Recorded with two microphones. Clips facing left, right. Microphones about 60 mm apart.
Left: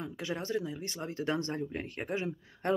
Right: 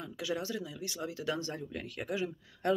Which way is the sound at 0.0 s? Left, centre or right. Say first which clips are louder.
Even; left.